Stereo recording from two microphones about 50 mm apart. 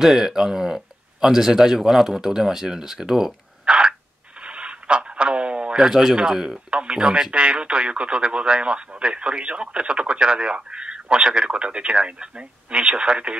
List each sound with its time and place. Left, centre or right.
0.0 s speech: centre
4.4 s a sound: right
6.7 s a man's voice: right